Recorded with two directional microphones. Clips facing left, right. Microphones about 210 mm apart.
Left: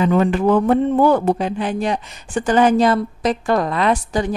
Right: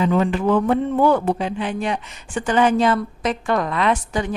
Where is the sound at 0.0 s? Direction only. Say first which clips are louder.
Left 3 dB; 50° left (ahead or behind).